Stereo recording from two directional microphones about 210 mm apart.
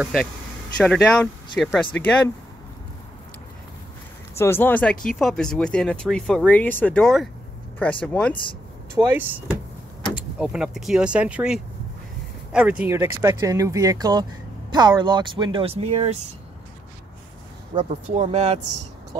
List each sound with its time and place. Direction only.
0.0 s speech: centre (ahead or behind)
4.4 s speech: 10° left (ahead or behind)
8.9 s speech: 10° right (ahead or behind); by 16.3 s 30° right (ahead or behind)
17.7 s speech: 30° right (ahead or behind)